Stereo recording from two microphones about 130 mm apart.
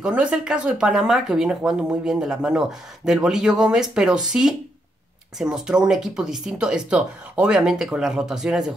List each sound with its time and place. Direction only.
0.0 s speech: 10° right (ahead or behind)